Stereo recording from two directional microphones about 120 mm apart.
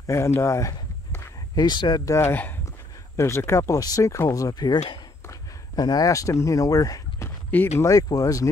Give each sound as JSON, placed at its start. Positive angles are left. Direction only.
{"t": 0.0, "sound": "speech", "side_deg": 25}
{"t": 5.8, "sound": "speech", "side_deg": 35}
{"t": 7.2, "sound": "a sound", "side_deg": 20}
{"t": 7.8, "sound": "speech", "side_deg": 30}